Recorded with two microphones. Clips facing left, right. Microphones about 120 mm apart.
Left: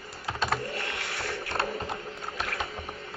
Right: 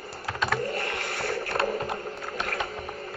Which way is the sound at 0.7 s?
45° right (ahead or behind).